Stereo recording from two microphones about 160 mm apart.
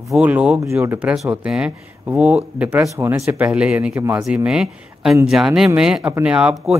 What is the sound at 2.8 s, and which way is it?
Speech, 20° right (ahead or behind).